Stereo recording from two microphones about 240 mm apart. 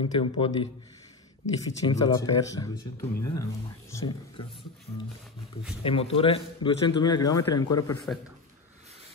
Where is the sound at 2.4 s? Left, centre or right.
Centre.